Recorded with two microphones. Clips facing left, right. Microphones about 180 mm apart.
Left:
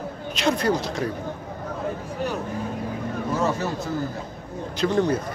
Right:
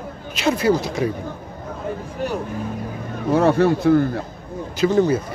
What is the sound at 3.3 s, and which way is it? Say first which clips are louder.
Speech: right 11 dB; 60° right (ahead or behind).